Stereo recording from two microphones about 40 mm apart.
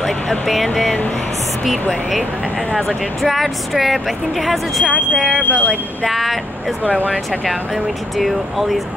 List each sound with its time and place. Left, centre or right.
0.0 s speech: centre
3.2 s speech: centre
5.4 s speech: left
6.0 s speech: centre
8.2 s speech: centre